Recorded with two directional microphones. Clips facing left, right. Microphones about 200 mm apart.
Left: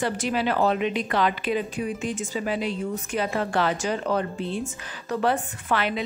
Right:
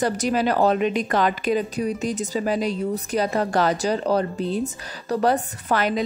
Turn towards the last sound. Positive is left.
turn(degrees=-40)  # may be behind; listen again after turning